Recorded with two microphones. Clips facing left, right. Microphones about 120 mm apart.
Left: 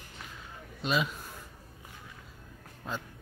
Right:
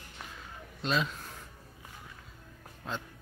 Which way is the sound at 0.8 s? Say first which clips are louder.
Left 1 dB; 5° left (ahead or behind).